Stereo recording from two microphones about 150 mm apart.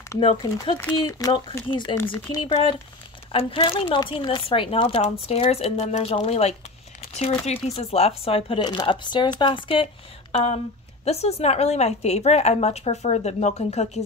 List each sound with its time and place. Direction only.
0.2 s speech: 35° left (ahead or behind)
0.7 s speech: 20° left (ahead or behind)
3.3 s speech: 35° left (ahead or behind)
11.1 s a woman's voice: 45° left (ahead or behind)